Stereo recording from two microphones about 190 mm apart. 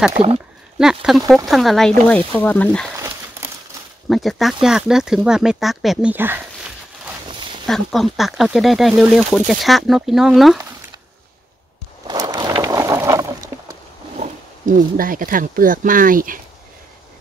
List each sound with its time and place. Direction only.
0.2 s speech: 5° right (ahead or behind)
3.0 s a sound: 15° right (ahead or behind)
4.1 s speech: centre (ahead or behind)
7.6 s speech: centre (ahead or behind)
12.1 s a sound: 25° right (ahead or behind)
14.1 s speech: 40° right (ahead or behind)